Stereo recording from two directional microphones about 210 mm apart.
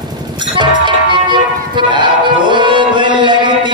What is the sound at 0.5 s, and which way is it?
Music, 20° right (ahead or behind).